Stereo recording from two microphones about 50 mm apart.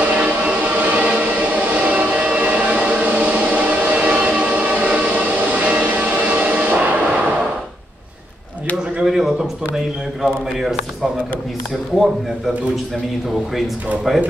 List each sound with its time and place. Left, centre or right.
0.0 s choir: right
9.0 s a sound: centre
10.2 s a man's voice: centre
14.1 s a man's voice: centre